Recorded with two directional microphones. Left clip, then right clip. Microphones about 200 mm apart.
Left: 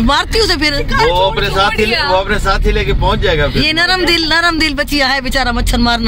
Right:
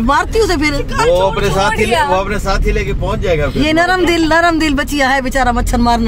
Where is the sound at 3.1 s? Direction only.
45° left (ahead or behind).